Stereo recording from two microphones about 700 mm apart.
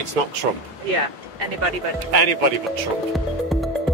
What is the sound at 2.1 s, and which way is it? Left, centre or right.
Speech, right.